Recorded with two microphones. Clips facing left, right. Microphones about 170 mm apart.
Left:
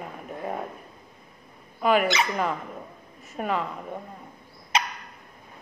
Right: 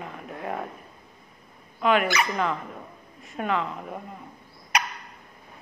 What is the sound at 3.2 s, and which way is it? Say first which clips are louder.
Speech: right 1 dB; centre (ahead or behind).